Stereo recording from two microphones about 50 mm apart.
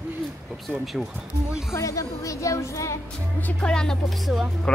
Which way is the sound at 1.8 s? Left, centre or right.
Left.